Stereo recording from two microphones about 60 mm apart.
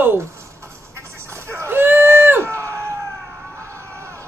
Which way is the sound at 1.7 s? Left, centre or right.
Right.